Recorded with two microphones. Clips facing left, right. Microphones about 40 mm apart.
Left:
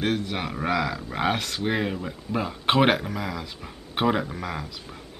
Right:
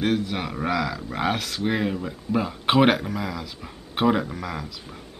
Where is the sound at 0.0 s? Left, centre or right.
Centre.